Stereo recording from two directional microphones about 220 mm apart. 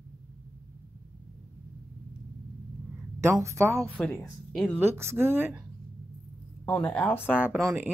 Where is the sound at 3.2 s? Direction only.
15° right (ahead or behind).